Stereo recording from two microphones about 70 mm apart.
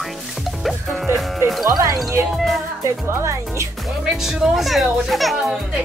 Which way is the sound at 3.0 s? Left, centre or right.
Right.